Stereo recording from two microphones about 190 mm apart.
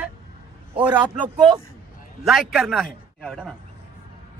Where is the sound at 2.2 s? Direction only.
Centre (ahead or behind).